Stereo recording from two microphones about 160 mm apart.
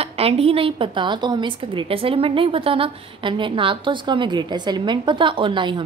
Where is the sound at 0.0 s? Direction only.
40° right (ahead or behind).